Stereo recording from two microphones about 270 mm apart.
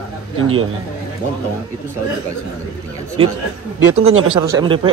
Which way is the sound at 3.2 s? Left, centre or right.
Centre.